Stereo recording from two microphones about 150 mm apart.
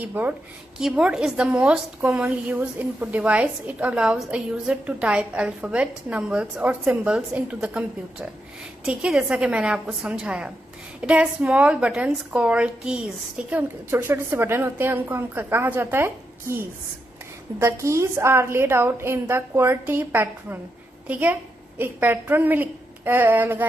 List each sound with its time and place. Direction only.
0.0 s a woman's voice: 10° right (ahead or behind)